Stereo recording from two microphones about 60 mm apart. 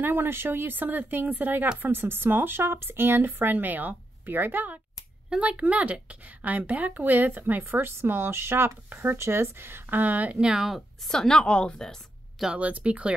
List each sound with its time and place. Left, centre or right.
0.0 s a woman's voice: right
5.3 s a woman's voice: right
10.4 s speech: centre
11.1 s a woman's voice: centre
12.5 s speech: right